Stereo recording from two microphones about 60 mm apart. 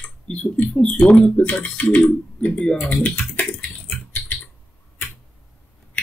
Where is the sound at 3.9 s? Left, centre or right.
Left.